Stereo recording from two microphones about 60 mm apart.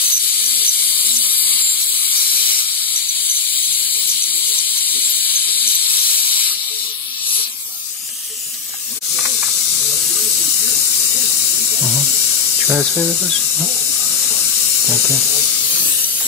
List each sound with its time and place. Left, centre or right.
0.0 s ratchet: right
2.1 s steam: right
5.9 s steam: right
9.7 s steam: centre
10.6 s hiss: centre
11.3 s electric toothbrush: centre
12.4 s hiss: centre